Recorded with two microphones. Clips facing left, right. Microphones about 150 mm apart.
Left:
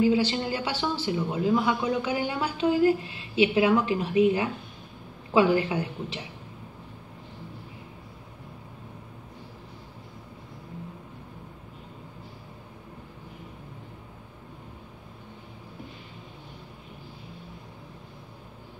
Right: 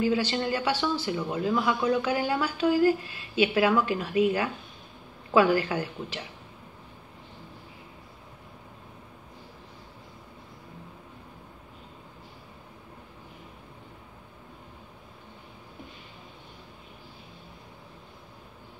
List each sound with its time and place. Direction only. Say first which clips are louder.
0.0 s a woman's voice: left 3 dB; 15° left (ahead or behind)